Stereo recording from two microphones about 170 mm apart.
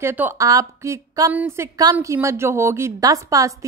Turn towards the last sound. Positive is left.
turn(degrees=-20)  # may be behind; listen again after turning